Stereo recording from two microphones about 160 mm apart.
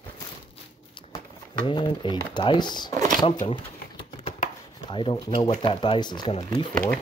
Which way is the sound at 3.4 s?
35° left (ahead or behind).